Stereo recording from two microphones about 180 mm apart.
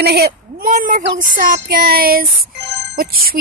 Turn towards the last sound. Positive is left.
turn(degrees=-55)  # may be behind; listen again after turning